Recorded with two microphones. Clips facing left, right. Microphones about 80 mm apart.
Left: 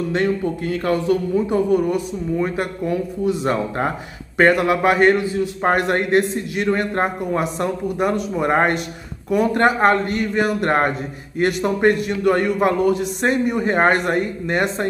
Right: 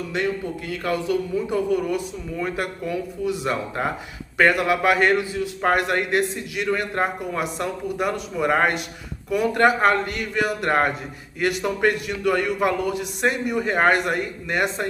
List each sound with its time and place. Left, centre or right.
0.1 s a man's voice: left